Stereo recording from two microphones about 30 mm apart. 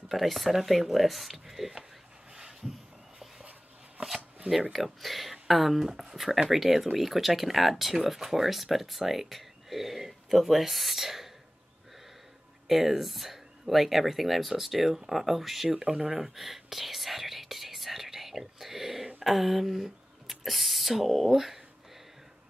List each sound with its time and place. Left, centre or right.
0.1 s speech: centre
2.3 s a sound: centre
4.7 s speech: centre
12.6 s speech: centre
15.7 s speech: centre
16.2 s whispering: centre
19.2 s speech: centre